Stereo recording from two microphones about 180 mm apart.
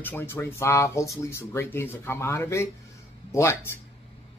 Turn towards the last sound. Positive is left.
turn(degrees=15)  # may be behind; listen again after turning